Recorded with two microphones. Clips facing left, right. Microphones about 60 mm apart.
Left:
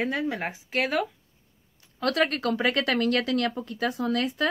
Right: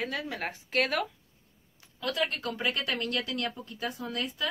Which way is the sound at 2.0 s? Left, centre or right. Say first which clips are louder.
Left 7 dB; left.